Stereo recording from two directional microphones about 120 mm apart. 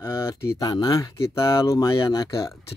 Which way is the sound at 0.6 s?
35° left (ahead or behind).